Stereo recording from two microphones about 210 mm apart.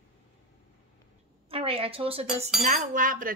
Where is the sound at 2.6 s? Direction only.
40° right (ahead or behind).